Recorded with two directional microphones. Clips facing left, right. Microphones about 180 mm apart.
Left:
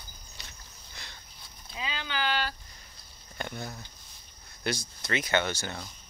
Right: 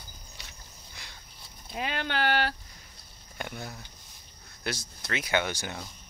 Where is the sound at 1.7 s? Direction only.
60° right (ahead or behind).